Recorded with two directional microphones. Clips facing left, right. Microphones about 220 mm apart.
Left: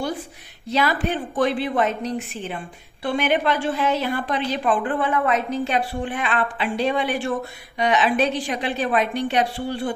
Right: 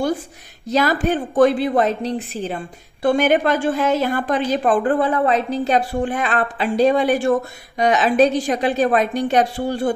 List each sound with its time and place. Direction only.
0.7 s a woman's voice: 45° right (ahead or behind)